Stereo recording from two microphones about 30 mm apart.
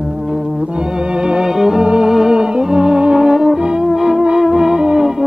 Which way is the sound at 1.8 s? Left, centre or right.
Right.